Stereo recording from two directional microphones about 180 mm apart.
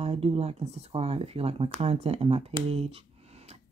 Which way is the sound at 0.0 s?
35° right (ahead or behind).